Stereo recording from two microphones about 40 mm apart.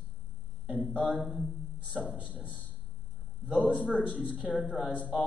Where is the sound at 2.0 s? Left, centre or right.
Right.